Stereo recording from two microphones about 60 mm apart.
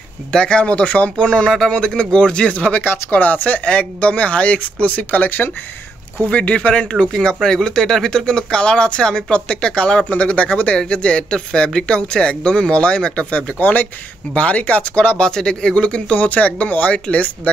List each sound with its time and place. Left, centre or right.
0.3 s speech: centre
6.2 s speech: left